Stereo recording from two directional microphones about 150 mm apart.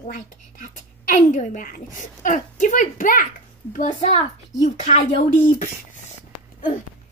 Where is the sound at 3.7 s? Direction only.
55° left (ahead or behind).